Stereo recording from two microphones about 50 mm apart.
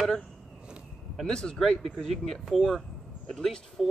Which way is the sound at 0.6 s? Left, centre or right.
Centre.